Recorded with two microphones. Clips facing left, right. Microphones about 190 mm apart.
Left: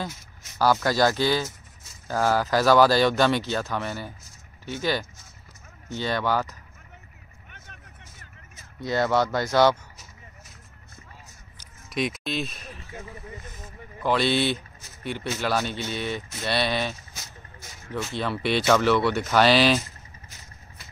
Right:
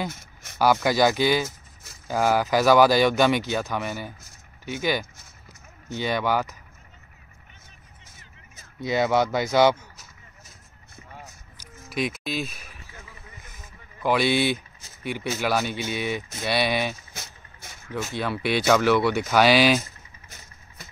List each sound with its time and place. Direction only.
0.6 s speech: 15° right (ahead or behind)
7.5 s vehicle: 65° left (ahead or behind)
8.8 s speech: 20° right (ahead or behind)
11.9 s speech: centre (ahead or behind)
14.0 s speech: 10° right (ahead or behind)
18.1 s speech: 5° right (ahead or behind)